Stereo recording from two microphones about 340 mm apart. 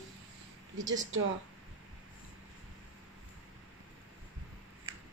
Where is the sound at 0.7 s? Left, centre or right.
Right.